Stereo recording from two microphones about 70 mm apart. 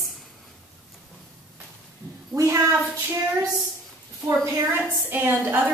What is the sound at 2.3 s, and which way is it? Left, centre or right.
Speech, right.